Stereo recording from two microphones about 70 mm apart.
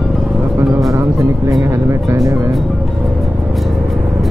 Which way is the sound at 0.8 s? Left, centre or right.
Right.